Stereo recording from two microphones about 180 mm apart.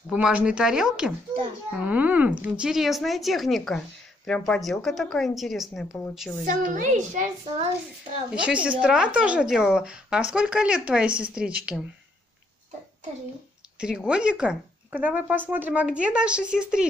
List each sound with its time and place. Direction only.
0.1 s speech: 5° right (ahead or behind)
6.7 s a woman's voice: 45° right (ahead or behind)
8.4 s speech: 5° right (ahead or behind)
13.7 s speech: 5° right (ahead or behind)